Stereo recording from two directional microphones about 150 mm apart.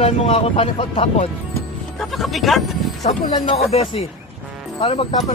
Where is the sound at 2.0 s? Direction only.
Centre (ahead or behind).